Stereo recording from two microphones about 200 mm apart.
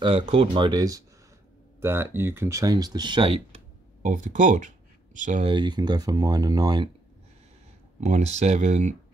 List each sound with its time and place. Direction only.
0.0 s speech: 25° right (ahead or behind)
5.5 s speech: 20° right (ahead or behind)
8.0 s speech: 35° right (ahead or behind)